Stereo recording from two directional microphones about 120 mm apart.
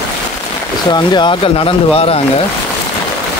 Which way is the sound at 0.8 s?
40° left (ahead or behind).